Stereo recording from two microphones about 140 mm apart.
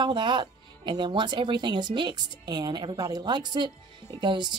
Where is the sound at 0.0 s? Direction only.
35° right (ahead or behind).